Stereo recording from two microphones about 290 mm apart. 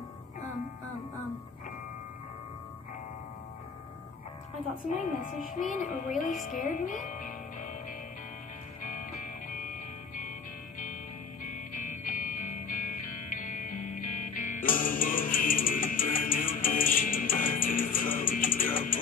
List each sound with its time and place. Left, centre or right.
4.8 s music: left
6.6 s speech: left
8.8 s music: left
11.4 s music: left